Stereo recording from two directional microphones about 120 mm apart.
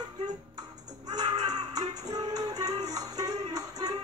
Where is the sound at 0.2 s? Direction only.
35° right (ahead or behind).